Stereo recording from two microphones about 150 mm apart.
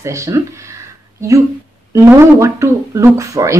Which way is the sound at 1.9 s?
20° right (ahead or behind).